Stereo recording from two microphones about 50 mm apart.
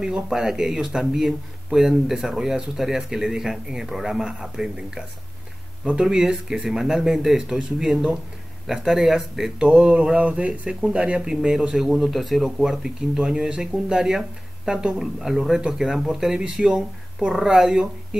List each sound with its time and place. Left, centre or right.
0.0 s speech: centre
9.6 s speech: centre